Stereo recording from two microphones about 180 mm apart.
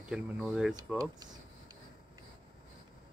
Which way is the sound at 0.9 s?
20° right (ahead or behind).